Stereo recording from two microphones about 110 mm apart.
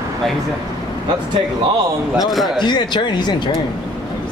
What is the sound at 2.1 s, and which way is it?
Speech, centre (ahead or behind).